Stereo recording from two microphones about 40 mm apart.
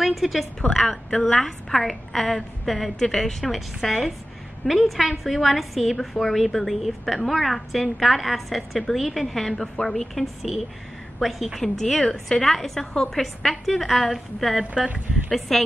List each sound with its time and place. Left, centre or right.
0.0 s a woman's voice: centre
4.6 s a woman's voice: centre
11.6 s a woman's voice: centre
14.6 s speech: right
15.3 s a woman's voice: centre